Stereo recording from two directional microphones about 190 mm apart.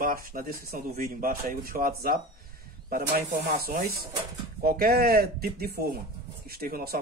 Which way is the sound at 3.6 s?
50° right (ahead or behind).